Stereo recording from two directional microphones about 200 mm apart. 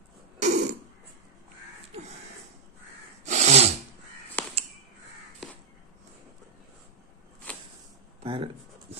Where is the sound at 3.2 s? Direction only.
35° right (ahead or behind).